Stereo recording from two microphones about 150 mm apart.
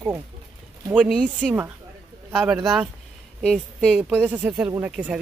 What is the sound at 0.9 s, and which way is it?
Speech, 5° right (ahead or behind).